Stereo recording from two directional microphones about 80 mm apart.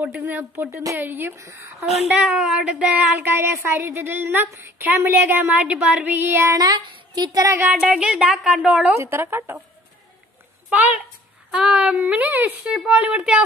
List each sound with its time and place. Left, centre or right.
0.2 s speech: right
2.1 s speech: centre; by 6.5 s right
6.5 s a woman's voice: right
7.5 s a sound: centre
8.6 s a woman's voice: centre
8.9 s speech: right
11.5 s a sound: centre
12.0 s speech: right
12.6 s a sound: centre